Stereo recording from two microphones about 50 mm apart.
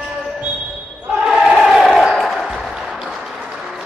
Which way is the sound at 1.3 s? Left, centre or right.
Centre.